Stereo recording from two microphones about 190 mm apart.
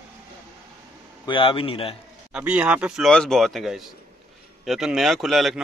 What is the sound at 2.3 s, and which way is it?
Speech, 5° right (ahead or behind).